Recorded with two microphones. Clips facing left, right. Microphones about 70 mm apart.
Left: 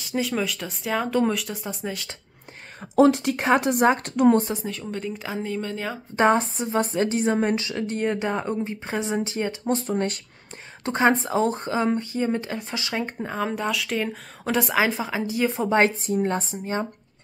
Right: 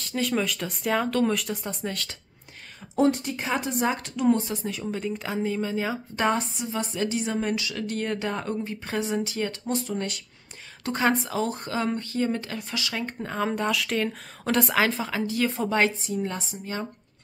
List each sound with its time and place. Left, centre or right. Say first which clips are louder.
0.2 s speech: right 1 dB; centre
3.0 s speech: left 5 dB; left
3.3 s a woman's voice: left 7 dB; left
4.6 s speech: even; centre
6.1 s a woman's voice: left 7 dB; left
10.9 s a woman's voice: left 4 dB; left
13.3 s speech: right 1 dB; centre; by 15.8 s left
15.8 s speech: left 4 dB; left